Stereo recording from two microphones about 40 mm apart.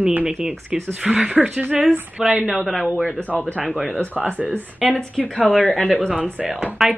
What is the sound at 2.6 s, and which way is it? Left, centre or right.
Speech, centre.